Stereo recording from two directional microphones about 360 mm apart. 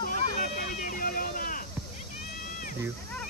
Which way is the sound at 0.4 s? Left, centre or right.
Left.